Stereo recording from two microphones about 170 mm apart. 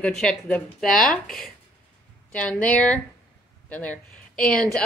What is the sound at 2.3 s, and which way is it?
A woman's voice, 10° left (ahead or behind).